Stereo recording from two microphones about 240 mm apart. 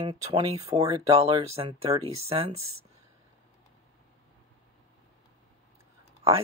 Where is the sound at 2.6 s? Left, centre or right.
Right.